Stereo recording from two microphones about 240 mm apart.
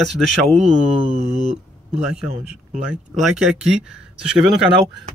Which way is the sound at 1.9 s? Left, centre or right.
Centre.